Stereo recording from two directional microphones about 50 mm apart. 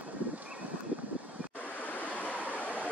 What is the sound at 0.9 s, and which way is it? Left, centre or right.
Boat, right.